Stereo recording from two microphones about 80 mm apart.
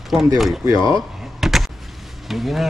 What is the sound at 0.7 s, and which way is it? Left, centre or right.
Speech, right.